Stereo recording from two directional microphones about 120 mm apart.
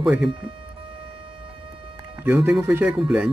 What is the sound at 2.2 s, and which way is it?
Speech, 5° right (ahead or behind).